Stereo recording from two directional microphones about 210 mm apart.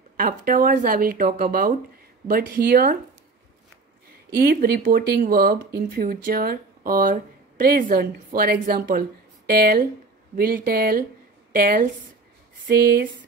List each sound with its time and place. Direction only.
0.2 s speech: 40° right (ahead or behind)
4.4 s speech: 45° right (ahead or behind)